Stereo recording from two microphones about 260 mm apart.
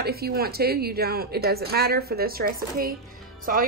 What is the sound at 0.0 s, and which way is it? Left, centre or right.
A woman's voice, right.